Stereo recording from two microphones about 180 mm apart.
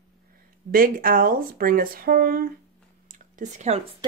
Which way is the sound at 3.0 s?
45° right (ahead or behind).